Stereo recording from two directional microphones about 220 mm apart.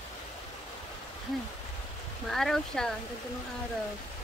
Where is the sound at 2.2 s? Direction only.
Centre (ahead or behind).